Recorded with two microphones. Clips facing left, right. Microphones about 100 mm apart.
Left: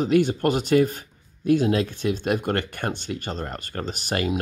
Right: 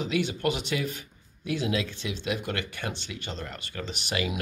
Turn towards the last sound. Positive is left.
turn(degrees=45)  # may be behind; listen again after turning